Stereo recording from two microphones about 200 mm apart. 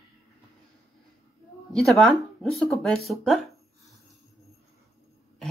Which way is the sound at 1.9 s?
Centre (ahead or behind).